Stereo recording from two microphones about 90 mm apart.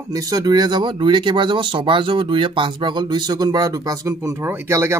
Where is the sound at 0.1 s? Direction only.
40° right (ahead or behind).